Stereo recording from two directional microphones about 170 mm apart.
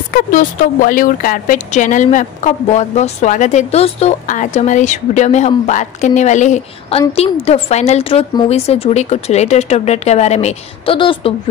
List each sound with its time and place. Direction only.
0.1 s speech: 50° left (ahead or behind); by 11.3 s 30° left (ahead or behind)